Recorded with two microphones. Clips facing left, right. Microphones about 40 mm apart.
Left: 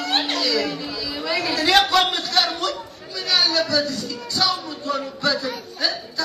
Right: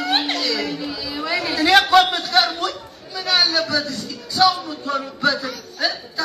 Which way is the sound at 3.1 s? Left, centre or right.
Centre.